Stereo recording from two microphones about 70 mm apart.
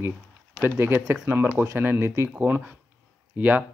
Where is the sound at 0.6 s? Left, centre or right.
Right.